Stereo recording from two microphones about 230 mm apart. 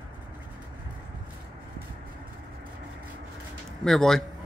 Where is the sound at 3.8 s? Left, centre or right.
Centre.